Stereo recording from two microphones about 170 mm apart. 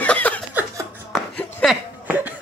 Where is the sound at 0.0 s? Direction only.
10° left (ahead or behind).